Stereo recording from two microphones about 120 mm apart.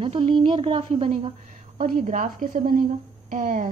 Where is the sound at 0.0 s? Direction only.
50° right (ahead or behind).